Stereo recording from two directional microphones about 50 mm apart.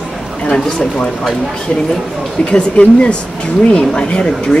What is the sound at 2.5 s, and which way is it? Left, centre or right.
Speech, left.